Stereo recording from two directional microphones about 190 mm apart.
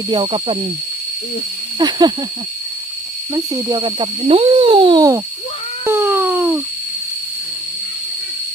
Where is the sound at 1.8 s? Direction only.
25° right (ahead or behind).